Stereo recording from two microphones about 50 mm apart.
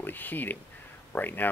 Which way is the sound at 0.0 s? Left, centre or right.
Left.